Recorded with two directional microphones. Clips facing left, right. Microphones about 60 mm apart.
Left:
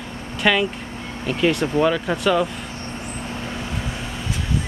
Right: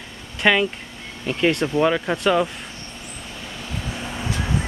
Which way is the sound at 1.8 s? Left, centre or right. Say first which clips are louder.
Even; centre.